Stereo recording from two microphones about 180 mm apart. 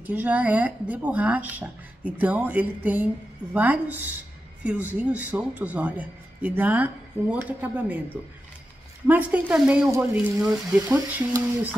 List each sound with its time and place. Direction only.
0.0 s speech: 10° right (ahead or behind)
9.0 s speech: 10° right (ahead or behind)
10.4 s speech: 5° right (ahead or behind)